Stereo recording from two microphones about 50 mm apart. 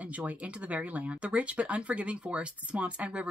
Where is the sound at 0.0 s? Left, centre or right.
Right.